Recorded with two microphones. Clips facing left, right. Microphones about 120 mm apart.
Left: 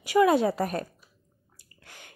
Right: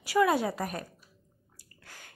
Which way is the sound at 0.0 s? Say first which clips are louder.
Left 4 dB; 20° left (ahead or behind).